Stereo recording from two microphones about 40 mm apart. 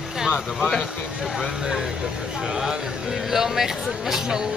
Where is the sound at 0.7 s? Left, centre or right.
Centre.